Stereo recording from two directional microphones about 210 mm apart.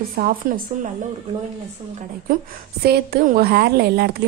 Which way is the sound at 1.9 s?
45° right (ahead or behind).